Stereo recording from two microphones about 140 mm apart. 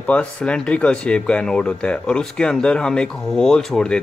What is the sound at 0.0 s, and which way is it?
Speech, 10° left (ahead or behind).